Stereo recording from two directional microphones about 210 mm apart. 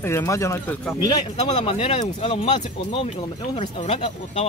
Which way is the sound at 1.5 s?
30° left (ahead or behind).